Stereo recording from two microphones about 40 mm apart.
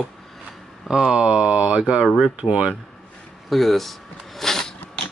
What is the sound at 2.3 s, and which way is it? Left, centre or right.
Speech, right.